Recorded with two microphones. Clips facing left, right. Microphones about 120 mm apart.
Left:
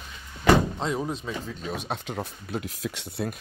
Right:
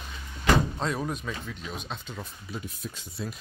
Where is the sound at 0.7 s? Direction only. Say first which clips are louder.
Left 2 dB; 20° left (ahead or behind).